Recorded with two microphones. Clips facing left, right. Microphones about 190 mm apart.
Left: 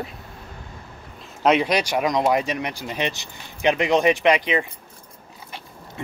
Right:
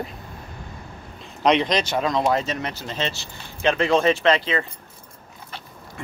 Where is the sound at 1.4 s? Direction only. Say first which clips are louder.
Left 1 dB; 10° left (ahead or behind).